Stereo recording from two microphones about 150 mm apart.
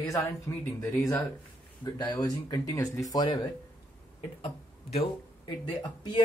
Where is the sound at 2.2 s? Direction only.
25° left (ahead or behind).